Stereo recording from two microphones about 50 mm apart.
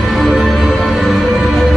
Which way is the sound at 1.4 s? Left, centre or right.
Centre.